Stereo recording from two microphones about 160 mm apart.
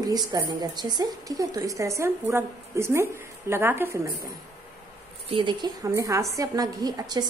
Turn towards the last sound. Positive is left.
turn(degrees=-25)  # may be behind; listen again after turning